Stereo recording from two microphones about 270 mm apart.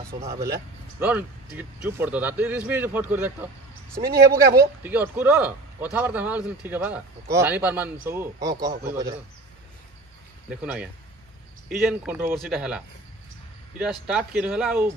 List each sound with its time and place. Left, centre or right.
0.9 s speech: centre
10.5 s speech: centre